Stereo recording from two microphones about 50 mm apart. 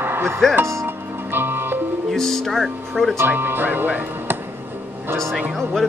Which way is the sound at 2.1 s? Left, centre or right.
Centre.